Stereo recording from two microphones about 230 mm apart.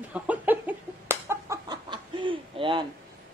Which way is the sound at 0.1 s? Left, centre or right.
Centre.